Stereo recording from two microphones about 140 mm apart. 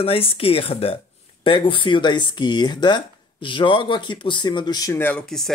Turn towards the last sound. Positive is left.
turn(degrees=5)  # may be behind; listen again after turning